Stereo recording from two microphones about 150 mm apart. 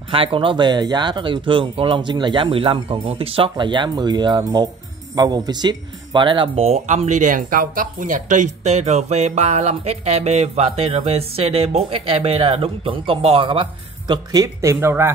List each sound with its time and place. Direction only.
0.1 s speech: 35° right (ahead or behind); by 15.1 s 15° right (ahead or behind)